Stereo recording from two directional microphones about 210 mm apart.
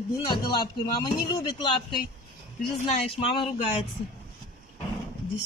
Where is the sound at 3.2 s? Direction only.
25° left (ahead or behind).